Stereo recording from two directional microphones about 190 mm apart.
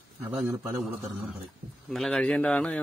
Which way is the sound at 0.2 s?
5° right (ahead or behind).